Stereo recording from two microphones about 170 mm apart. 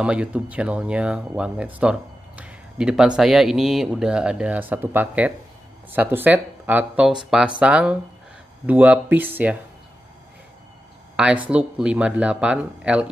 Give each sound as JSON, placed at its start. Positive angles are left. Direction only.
{"t": 0.0, "sound": "speech", "side_deg": -5}
{"t": 11.4, "sound": "speech", "side_deg": -10}